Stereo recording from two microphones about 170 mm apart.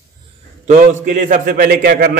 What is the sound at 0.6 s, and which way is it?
A man's voice, 45° right (ahead or behind).